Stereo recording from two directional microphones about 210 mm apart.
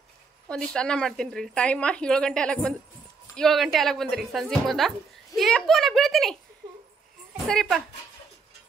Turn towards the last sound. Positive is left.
turn(degrees=0)  # may be behind; listen again after turning